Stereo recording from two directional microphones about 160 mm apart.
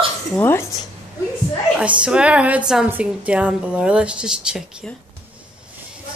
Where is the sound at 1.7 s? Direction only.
5° right (ahead or behind).